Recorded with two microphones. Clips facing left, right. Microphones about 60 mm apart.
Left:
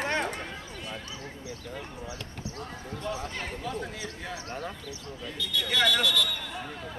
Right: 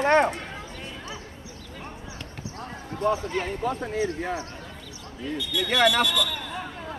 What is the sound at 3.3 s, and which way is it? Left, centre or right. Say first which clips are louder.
Speech: right 7 dB; right.